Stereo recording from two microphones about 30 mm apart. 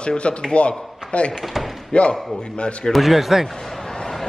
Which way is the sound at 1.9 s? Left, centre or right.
Left.